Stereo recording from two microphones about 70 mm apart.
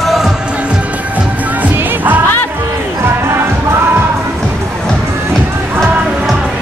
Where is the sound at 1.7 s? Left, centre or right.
Right.